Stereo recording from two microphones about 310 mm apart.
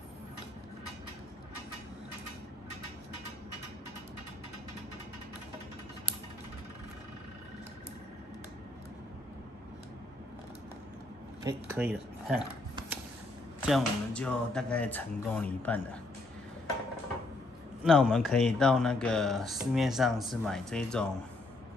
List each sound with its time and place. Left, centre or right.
11.4 s speech: centre
13.6 s speech: centre
17.8 s speech: centre